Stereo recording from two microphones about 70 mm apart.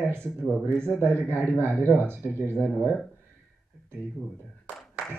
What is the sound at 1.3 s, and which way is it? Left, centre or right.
Speech, left.